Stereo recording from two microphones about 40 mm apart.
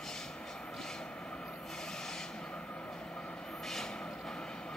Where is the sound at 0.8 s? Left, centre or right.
Centre.